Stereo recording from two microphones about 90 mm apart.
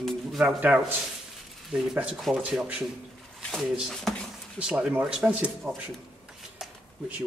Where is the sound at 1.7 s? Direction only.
5° right (ahead or behind).